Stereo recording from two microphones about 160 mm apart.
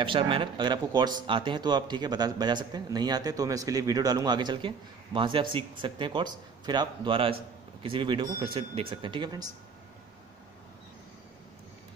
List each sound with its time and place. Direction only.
0.0 s speech: 35° right (ahead or behind)